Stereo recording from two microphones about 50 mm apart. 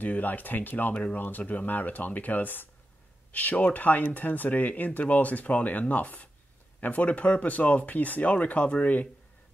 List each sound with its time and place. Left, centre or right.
0.0 s speech: left
0.9 s speech: left